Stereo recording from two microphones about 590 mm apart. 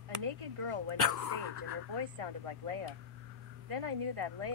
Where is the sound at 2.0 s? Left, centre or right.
Right.